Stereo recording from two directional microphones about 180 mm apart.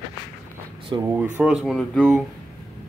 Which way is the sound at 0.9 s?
20° right (ahead or behind).